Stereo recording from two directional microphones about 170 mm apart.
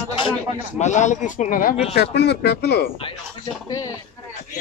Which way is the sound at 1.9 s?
75° left (ahead or behind).